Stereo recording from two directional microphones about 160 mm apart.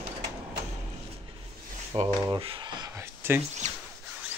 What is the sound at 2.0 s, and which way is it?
Speech, 30° right (ahead or behind).